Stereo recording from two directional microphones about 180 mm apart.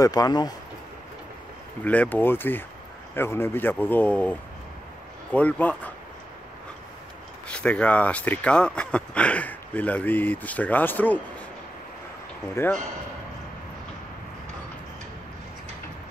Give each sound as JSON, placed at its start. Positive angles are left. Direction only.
{"t": 0.0, "sound": "speech", "side_deg": 20}
{"t": 1.9, "sound": "speech", "side_deg": 10}
{"t": 7.4, "sound": "speech", "side_deg": 5}
{"t": 12.6, "sound": "speech", "side_deg": 15}